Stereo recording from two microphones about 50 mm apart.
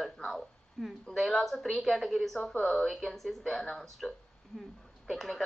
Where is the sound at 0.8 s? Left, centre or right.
Centre.